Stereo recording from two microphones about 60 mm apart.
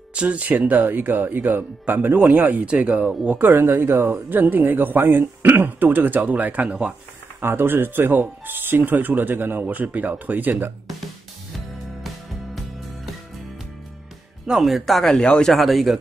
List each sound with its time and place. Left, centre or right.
0.1 s speech: right
7.3 s speech: right
14.4 s speech: centre
15.0 s speech: centre
15.5 s speech: centre